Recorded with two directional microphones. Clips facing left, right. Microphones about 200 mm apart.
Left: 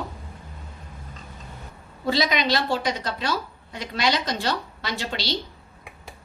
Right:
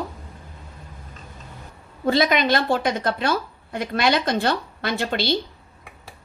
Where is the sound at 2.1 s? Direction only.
50° right (ahead or behind).